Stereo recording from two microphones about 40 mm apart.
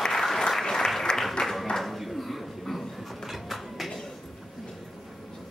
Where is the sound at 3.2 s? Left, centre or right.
Centre.